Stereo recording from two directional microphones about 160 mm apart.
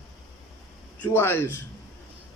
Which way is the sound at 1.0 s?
15° left (ahead or behind).